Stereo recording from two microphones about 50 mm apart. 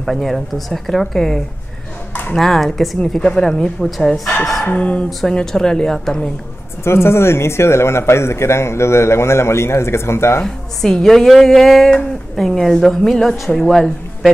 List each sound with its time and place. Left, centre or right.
0.0 s speech: centre
4.7 s speech: left
5.3 s a woman's voice: centre
6.8 s speech: left
10.4 s a woman's voice: centre